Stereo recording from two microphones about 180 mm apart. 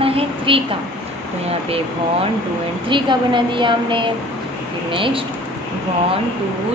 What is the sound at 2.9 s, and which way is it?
A woman's voice, 25° right (ahead or behind).